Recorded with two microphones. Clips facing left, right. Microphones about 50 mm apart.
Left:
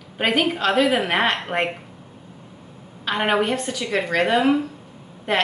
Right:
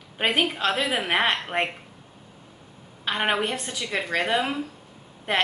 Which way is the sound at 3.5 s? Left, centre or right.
Centre.